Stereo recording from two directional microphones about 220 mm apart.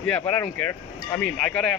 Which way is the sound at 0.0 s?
5° left (ahead or behind).